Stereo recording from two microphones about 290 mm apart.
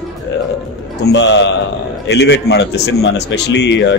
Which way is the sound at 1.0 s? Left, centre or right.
Left.